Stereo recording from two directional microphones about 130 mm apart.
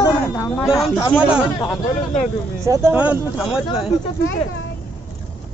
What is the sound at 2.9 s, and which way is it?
Speech, 10° right (ahead or behind).